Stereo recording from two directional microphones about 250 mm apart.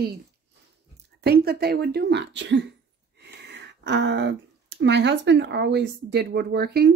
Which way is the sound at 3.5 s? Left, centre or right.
Right.